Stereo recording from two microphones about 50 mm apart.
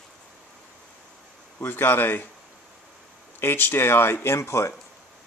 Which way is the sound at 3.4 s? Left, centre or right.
Left.